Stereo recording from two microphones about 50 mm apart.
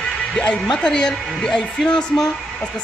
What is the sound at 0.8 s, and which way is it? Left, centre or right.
A woman's voice, centre.